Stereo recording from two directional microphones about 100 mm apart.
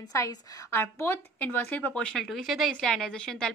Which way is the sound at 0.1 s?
35° left (ahead or behind).